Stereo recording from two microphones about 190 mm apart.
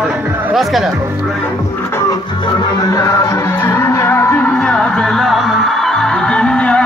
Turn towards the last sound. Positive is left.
turn(degrees=5)  # may be behind; listen again after turning